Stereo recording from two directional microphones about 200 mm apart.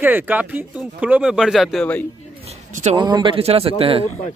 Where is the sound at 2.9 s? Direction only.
20° right (ahead or behind).